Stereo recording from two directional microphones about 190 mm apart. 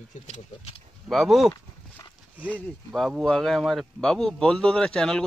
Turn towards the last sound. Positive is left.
turn(degrees=5)  # may be behind; listen again after turning